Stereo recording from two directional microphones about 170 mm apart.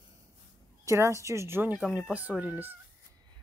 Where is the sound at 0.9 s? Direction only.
15° right (ahead or behind).